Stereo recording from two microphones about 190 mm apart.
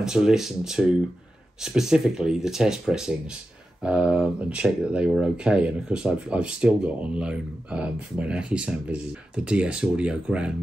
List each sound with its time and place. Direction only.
0.0 s speech: 5° right (ahead or behind)